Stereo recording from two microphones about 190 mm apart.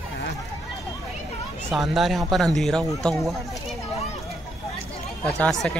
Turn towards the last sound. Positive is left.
turn(degrees=5)  # may be behind; listen again after turning